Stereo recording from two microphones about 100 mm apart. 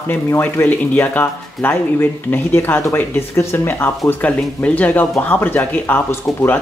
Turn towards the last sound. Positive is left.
turn(degrees=25)  # may be behind; listen again after turning